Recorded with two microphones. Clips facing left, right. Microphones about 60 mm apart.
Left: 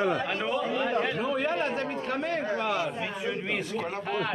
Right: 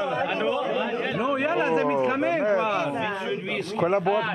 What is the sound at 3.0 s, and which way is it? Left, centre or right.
Speech, centre.